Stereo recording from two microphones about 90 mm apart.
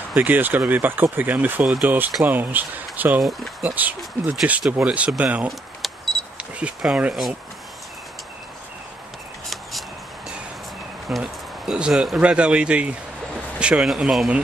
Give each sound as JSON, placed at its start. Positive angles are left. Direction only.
{"t": 0.1, "sound": "speech", "side_deg": -20}
{"t": 3.2, "sound": "speech", "side_deg": 0}
{"t": 3.7, "sound": "speech", "side_deg": -20}
{"t": 5.8, "sound": "vehicle", "side_deg": 0}
{"t": 6.6, "sound": "speech", "side_deg": -10}
{"t": 9.5, "sound": "a sound", "side_deg": 0}
{"t": 11.1, "sound": "speech", "side_deg": -5}